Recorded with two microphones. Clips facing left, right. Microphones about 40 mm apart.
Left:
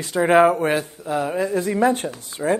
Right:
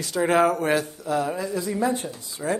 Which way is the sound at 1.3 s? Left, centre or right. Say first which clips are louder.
Left 6 dB; left.